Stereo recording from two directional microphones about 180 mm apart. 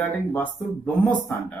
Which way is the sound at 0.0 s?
10° left (ahead or behind).